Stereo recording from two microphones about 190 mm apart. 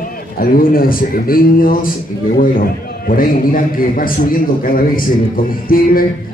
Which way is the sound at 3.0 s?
45° left (ahead or behind).